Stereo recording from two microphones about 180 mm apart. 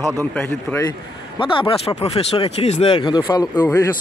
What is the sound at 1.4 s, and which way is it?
Speech, 30° left (ahead or behind).